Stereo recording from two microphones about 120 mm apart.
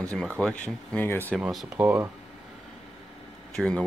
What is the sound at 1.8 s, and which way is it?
Speech, 20° right (ahead or behind).